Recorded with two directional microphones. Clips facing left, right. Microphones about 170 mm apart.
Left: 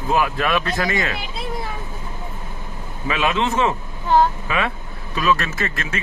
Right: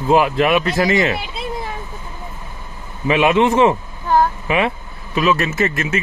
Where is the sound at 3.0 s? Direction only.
20° right (ahead or behind).